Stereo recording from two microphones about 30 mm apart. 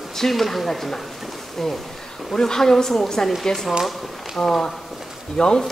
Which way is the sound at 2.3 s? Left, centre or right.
Centre.